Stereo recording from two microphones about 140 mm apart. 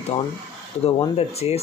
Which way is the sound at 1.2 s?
50° left (ahead or behind).